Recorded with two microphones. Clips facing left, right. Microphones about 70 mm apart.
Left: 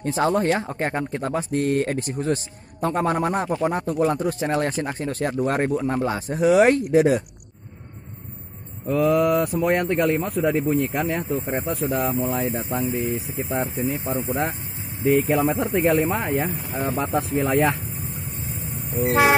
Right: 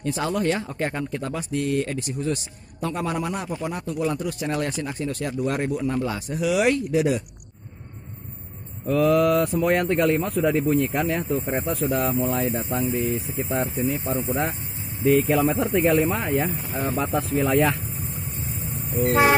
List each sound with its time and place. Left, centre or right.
0.0 s speech: left
8.8 s speech: centre
13.7 s speech: centre
14.2 s speech: centre
17.5 s speech: centre